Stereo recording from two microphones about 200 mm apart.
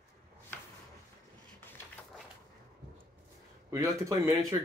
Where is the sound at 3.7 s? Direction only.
15° right (ahead or behind).